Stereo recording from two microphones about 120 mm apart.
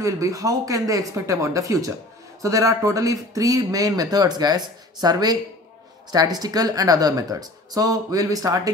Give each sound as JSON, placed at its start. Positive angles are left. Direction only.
{"t": 0.0, "sound": "speech", "side_deg": -30}